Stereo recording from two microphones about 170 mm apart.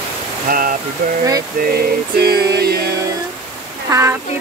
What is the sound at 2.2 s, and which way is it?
Music, 70° right (ahead or behind).